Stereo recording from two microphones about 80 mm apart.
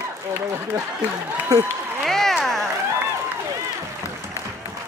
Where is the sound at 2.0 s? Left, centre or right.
Centre.